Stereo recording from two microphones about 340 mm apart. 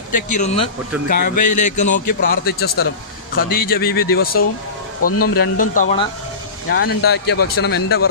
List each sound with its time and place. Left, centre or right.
0.1 s speech: left
1.0 s speech: left
1.4 s speech: left
2.0 s speech: left
5.0 s a man's voice: left
5.6 s speech: left